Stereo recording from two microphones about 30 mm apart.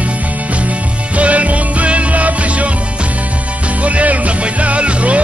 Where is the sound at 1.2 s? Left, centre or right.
Right.